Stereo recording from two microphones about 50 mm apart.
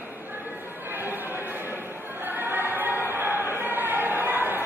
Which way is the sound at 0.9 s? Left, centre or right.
Right.